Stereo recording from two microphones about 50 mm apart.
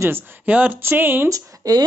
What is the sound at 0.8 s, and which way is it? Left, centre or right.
Speech, right.